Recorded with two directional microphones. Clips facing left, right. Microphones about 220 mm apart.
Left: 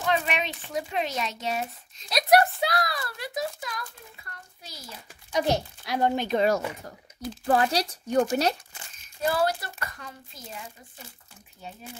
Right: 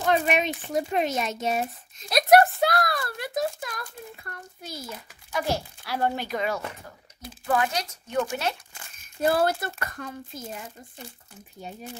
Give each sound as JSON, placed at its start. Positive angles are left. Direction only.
{"t": 0.0, "sound": "speech", "side_deg": -45}
{"t": 5.3, "sound": "speech", "side_deg": 20}
{"t": 7.4, "sound": "speech", "side_deg": 35}
{"t": 9.2, "sound": "speech", "side_deg": -50}